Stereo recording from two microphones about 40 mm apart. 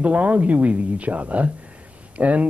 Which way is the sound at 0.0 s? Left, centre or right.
Right.